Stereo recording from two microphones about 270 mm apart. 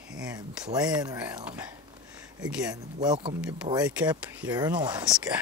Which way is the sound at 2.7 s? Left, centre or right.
Centre.